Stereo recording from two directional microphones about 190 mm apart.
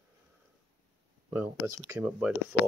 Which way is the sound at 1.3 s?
10° right (ahead or behind).